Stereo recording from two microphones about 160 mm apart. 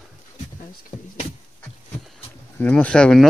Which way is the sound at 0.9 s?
50° left (ahead or behind).